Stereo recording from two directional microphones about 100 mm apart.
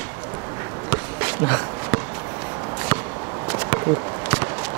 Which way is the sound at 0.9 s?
25° right (ahead or behind).